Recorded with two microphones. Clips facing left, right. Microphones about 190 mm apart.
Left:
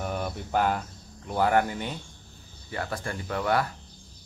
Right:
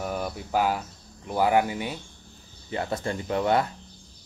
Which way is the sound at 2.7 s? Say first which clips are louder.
Right 4 dB; 20° right (ahead or behind).